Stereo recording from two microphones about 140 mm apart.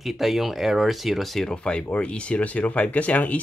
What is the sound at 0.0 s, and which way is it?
Speech, centre (ahead or behind).